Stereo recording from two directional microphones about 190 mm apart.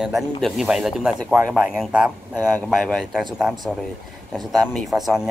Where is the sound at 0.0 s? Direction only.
Centre (ahead or behind).